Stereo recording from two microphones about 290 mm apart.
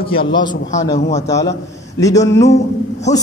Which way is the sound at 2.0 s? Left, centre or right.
Centre.